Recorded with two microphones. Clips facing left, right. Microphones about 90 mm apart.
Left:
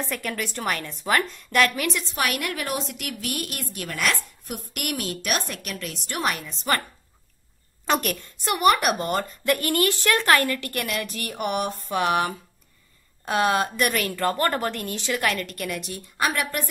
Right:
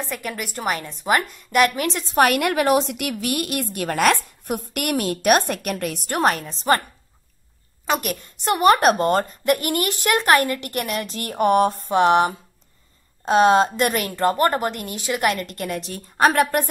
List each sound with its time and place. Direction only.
0.0 s a woman's voice: 10° right (ahead or behind)
1.8 s a woman's voice: 35° right (ahead or behind)
2.4 s a woman's voice: 75° right (ahead or behind); by 6.1 s 60° right (ahead or behind)
6.1 s a woman's voice: 40° right (ahead or behind)
7.8 s a sound: 5° right (ahead or behind)
8.1 s a woman's voice: 30° right (ahead or behind)
9.5 s a woman's voice: 20° right (ahead or behind); by 16.6 s 45° right (ahead or behind)